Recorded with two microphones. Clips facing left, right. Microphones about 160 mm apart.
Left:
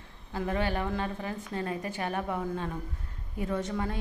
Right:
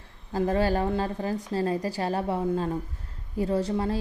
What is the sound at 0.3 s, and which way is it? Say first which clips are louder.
A woman's voice: right 6 dB; 35° right (ahead or behind).